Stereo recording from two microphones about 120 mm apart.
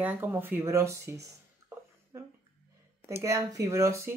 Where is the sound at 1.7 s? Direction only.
20° right (ahead or behind).